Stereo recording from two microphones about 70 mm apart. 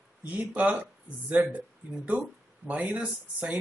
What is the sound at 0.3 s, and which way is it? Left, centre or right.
Speech, centre.